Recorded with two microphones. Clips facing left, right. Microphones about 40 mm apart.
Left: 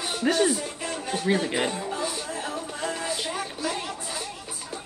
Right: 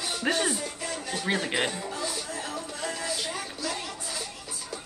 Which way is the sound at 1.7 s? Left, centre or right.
Left.